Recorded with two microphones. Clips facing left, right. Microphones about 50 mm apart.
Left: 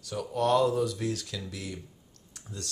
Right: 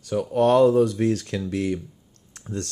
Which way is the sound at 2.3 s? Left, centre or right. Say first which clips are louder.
Right 11 dB; right.